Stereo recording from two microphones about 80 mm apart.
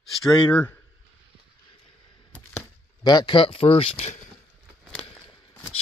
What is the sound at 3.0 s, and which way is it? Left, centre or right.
Speech, left.